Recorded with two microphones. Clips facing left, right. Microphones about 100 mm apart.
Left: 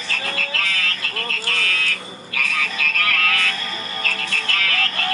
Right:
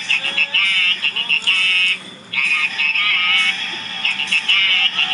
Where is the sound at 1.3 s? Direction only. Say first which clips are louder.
Right 1 dB; 15° left (ahead or behind).